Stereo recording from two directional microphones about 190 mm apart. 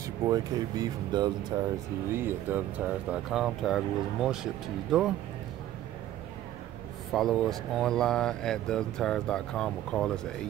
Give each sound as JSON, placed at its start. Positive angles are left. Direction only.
{"t": 0.0, "sound": "speech", "side_deg": -20}
{"t": 7.1, "sound": "speech", "side_deg": 0}